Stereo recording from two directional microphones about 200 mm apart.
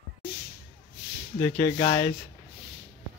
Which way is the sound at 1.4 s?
25° left (ahead or behind).